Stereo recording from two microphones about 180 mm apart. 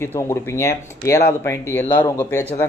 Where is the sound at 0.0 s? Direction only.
15° left (ahead or behind).